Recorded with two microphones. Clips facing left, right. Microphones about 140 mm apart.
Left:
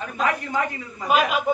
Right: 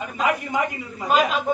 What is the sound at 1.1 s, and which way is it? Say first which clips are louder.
Speech: even; 5° left (ahead or behind).